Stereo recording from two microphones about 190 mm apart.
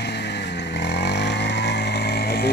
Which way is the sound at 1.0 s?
65° left (ahead or behind).